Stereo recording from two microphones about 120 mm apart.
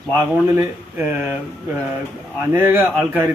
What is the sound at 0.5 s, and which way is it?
Speech, 15° right (ahead or behind).